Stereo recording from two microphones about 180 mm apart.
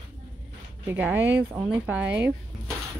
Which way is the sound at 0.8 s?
10° right (ahead or behind).